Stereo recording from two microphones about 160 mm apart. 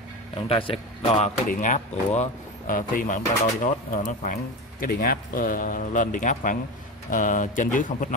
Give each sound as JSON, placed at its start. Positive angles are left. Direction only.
{"t": 0.5, "sound": "speech", "side_deg": 35}
{"t": 1.5, "sound": "speech", "side_deg": 50}